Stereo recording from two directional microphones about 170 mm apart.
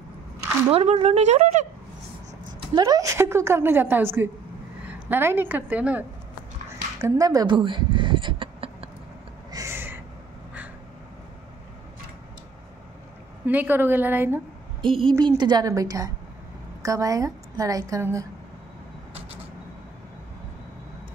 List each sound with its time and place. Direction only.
0.7 s a woman's voice: 35° right (ahead or behind)
2.7 s a woman's voice: 20° right (ahead or behind)
7.0 s a sound: 20° right (ahead or behind)
9.5 s owl: 15° right (ahead or behind)
13.5 s a woman's voice: 10° right (ahead or behind)
15.0 s a woman's voice: 25° right (ahead or behind)